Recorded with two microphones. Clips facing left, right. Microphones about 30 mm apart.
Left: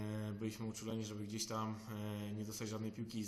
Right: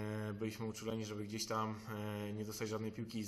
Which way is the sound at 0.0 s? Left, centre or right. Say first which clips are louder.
Right 2 dB; centre.